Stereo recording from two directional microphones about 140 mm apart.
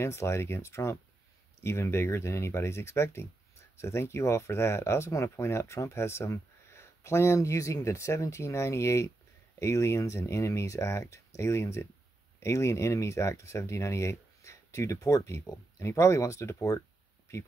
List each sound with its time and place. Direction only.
0.0 s speech: 20° left (ahead or behind)